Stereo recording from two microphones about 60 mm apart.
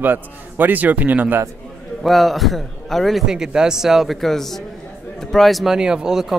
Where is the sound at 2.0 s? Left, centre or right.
Centre.